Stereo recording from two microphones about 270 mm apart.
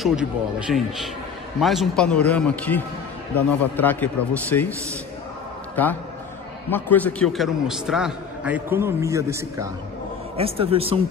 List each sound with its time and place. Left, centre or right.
0.0 s a man's voice: centre
5.8 s a man's voice: centre
10.3 s speech: right